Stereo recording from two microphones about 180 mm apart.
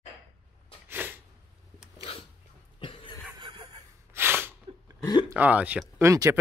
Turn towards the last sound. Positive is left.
turn(degrees=-15)  # may be behind; listen again after turning